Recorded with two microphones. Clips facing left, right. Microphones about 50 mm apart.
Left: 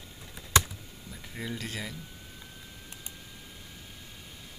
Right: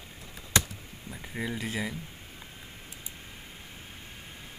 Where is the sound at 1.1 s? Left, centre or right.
Centre.